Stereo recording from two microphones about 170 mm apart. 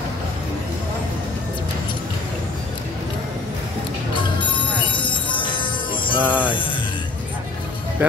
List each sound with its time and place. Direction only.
4.2 s music: 30° left (ahead or behind)
6.2 s music: 10° right (ahead or behind)